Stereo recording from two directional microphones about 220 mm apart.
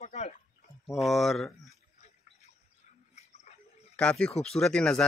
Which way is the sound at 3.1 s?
30° left (ahead or behind).